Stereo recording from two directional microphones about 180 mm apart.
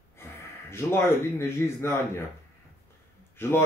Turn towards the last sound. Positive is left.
turn(degrees=15)  # may be behind; listen again after turning